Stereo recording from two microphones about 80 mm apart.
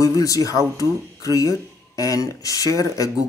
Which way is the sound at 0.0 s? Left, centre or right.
Left.